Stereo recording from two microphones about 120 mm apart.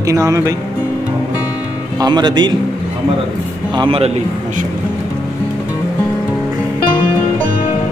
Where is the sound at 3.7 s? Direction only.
40° right (ahead or behind).